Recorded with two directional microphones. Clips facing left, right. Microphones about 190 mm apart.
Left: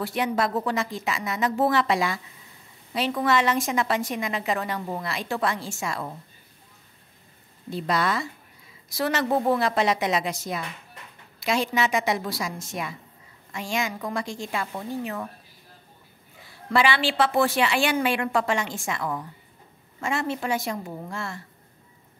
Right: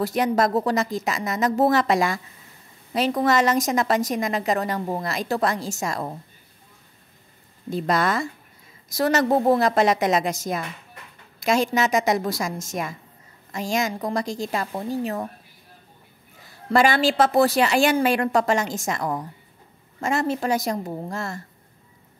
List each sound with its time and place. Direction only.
0.0 s a woman's voice: 40° right (ahead or behind)
7.7 s a woman's voice: 45° right (ahead or behind)
16.4 s a woman's voice: 45° right (ahead or behind)